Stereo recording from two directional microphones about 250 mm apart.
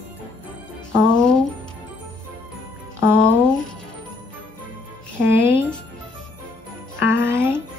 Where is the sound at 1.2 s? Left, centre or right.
Centre.